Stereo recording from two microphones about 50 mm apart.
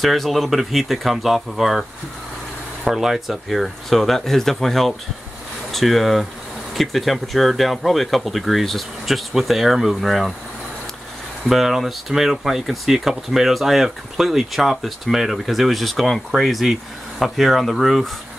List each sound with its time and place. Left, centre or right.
0.0 s speech: centre
11.4 s speech: centre